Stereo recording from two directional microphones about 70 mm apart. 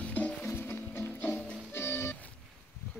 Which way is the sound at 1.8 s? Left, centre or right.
Left.